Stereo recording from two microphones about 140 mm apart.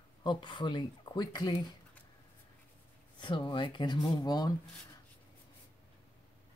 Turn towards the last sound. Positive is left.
turn(degrees=30)  # may be behind; listen again after turning